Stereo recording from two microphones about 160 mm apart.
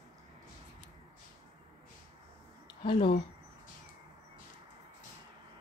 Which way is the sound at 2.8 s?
35° left (ahead or behind).